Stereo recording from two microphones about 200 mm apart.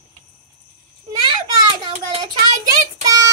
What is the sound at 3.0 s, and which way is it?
Child singing, 15° right (ahead or behind).